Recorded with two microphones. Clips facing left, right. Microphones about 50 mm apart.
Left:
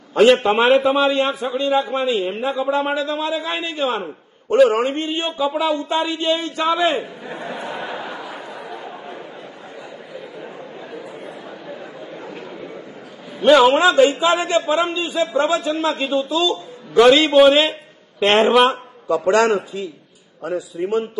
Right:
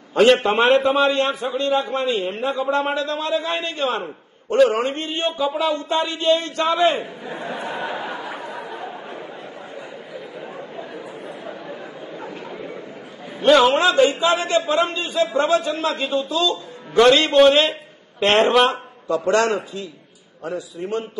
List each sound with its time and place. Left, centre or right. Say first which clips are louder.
0.1 s a man's voice: left 2 dB; centre
7.3 s chatter: even; right
13.4 s a man's voice: left 2 dB; centre
14.3 s a man's voice: left 1 dB; centre
18.7 s a man's voice: left 2 dB; centre
20.8 s a man's voice: left 7 dB; left